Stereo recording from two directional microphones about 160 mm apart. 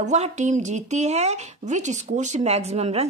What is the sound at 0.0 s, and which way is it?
A woman's voice, 45° right (ahead or behind).